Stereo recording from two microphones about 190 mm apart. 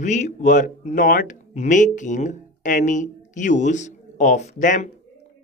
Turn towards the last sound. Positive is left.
turn(degrees=40)  # may be behind; listen again after turning